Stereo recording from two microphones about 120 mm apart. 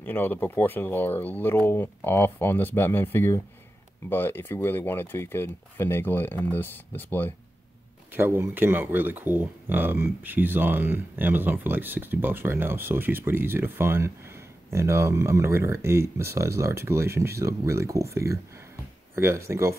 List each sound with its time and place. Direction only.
0.0 s speech: 15° left (ahead or behind)
8.1 s speech: 15° right (ahead or behind)